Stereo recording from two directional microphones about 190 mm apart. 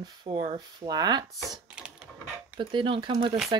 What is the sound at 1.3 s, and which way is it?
Typing, centre (ahead or behind).